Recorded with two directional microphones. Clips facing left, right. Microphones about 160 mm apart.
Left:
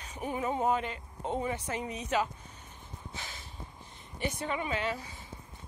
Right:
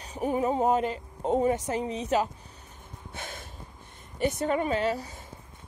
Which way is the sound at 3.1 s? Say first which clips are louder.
Right 6 dB; 50° right (ahead or behind).